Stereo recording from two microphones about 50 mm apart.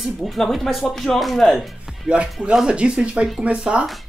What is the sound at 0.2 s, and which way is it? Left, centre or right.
A woman's voice, centre.